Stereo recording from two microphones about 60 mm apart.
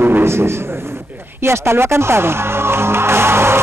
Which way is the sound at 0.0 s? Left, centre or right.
Right.